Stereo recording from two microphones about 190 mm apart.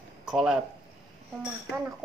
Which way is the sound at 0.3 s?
5° right (ahead or behind).